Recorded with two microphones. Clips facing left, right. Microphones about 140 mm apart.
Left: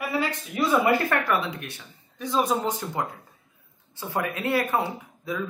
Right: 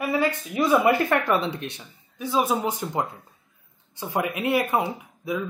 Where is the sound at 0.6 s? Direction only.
15° right (ahead or behind).